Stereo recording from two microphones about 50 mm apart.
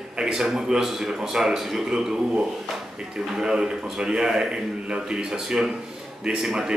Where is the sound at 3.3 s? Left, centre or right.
Centre.